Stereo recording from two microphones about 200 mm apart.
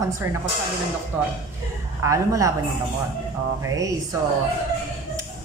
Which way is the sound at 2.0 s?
15° right (ahead or behind).